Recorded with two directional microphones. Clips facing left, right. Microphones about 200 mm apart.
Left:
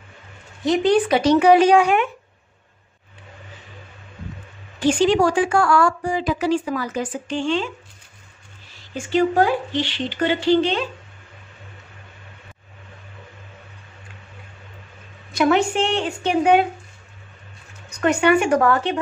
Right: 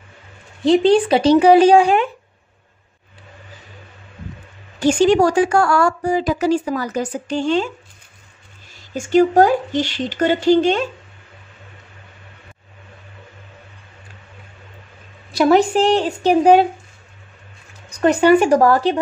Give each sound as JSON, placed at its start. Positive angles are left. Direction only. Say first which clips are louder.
{"t": 0.7, "sound": "a woman's voice", "louder": "right 4 dB", "side_deg": -30}
{"t": 4.7, "sound": "a woman's voice", "louder": "right 3 dB", "side_deg": -45}
{"t": 8.9, "sound": "speech", "louder": "right 5 dB", "side_deg": -45}
{"t": 15.3, "sound": "a woman's voice", "louder": "right 4 dB", "side_deg": -35}
{"t": 17.8, "sound": "a woman's voice", "louder": "right 4 dB", "side_deg": -35}